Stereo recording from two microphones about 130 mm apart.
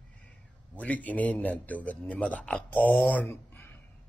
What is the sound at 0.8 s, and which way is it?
A man's voice, 10° left (ahead or behind).